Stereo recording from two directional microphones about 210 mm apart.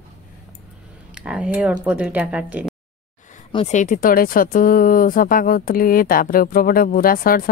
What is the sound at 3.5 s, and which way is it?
Speech, 30° left (ahead or behind).